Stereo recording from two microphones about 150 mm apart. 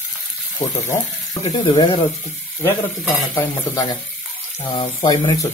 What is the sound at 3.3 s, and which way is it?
Speech, 20° left (ahead or behind).